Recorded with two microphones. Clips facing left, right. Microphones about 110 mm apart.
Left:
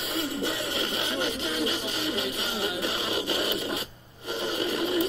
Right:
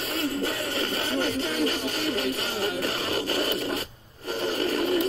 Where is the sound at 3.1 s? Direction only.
45° right (ahead or behind).